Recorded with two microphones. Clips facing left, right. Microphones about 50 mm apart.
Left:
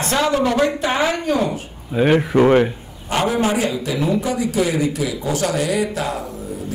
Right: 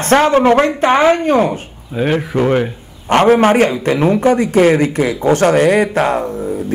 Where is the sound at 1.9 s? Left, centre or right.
Centre.